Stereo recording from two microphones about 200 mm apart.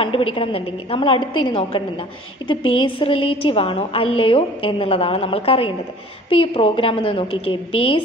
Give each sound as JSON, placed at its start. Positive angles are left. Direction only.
{"t": 0.0, "sound": "a woman's voice", "side_deg": 30}